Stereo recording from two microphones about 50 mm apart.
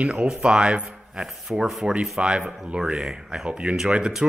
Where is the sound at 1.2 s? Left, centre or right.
Centre.